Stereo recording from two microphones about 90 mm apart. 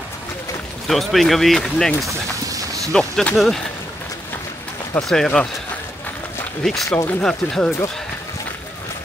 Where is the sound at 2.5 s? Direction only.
40° right (ahead or behind).